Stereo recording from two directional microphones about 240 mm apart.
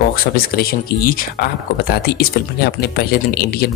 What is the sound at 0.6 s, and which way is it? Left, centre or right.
Speech, left.